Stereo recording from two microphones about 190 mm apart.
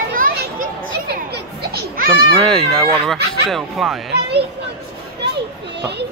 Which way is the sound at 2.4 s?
5° left (ahead or behind).